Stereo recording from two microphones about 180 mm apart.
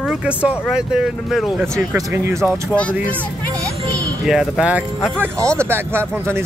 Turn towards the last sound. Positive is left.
turn(degrees=-15)  # may be behind; listen again after turning